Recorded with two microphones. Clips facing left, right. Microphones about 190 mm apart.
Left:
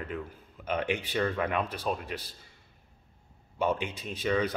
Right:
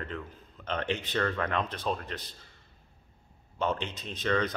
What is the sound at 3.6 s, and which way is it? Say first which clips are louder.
Speech: left 2 dB; 10° left (ahead or behind).